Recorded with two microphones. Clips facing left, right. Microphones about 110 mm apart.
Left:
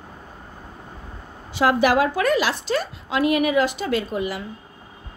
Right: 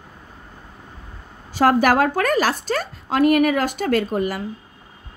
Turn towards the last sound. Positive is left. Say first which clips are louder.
# right 3 dB
turn(degrees=-45)  # may be behind; listen again after turning